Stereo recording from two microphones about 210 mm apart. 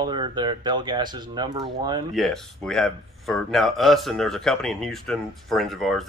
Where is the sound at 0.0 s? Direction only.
20° right (ahead or behind).